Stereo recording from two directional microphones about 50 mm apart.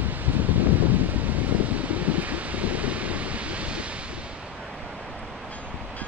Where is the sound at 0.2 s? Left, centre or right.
Right.